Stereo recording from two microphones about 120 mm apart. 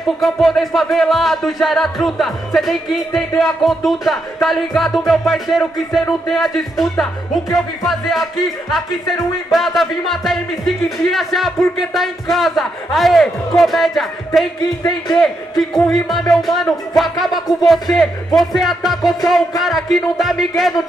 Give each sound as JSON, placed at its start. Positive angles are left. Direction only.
{"t": 0.2, "sound": "music", "side_deg": 0}
{"t": 14.8, "sound": "a man's voice", "side_deg": 30}
{"t": 15.7, "sound": "music", "side_deg": 0}